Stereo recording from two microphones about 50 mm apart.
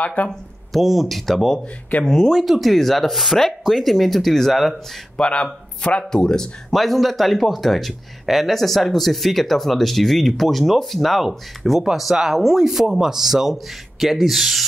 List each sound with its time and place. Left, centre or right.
0.0 s speech: left
0.7 s speech: centre
2.3 s speech: centre
5.1 s speech: left
6.7 s speech: centre